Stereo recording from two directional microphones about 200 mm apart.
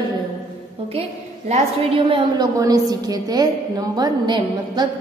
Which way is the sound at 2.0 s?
25° right (ahead or behind).